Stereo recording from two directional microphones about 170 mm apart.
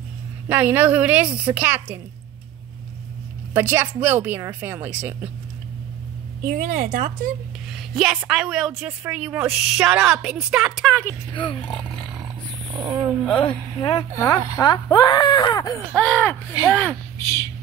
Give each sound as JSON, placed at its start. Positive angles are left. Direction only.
{"t": 0.5, "sound": "a woman's voice", "side_deg": -10}
{"t": 3.5, "sound": "a woman's voice", "side_deg": -10}
{"t": 6.4, "sound": "a woman's voice", "side_deg": -50}
{"t": 7.7, "sound": "a woman's voice", "side_deg": 0}
{"t": 11.3, "sound": "speech", "side_deg": 30}
{"t": 12.7, "sound": "speech", "side_deg": -20}
{"t": 13.3, "sound": "speech", "side_deg": 30}
{"t": 15.9, "sound": "speech", "side_deg": 10}